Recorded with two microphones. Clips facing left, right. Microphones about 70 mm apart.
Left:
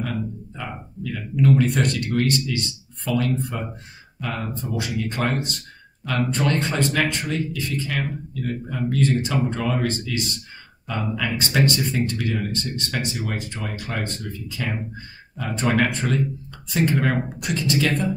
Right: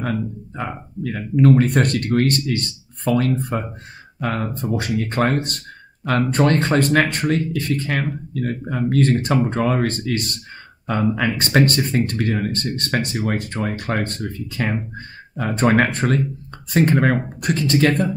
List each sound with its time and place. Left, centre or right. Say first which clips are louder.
1.0 s speech: right 5 dB; right